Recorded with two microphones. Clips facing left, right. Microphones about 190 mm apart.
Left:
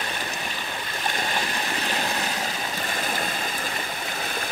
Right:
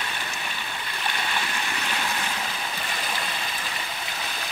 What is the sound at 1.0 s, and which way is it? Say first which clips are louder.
Stream: left 2 dB; 40° left (ahead or behind).